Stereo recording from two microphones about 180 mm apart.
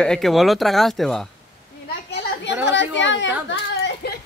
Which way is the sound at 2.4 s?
80° left.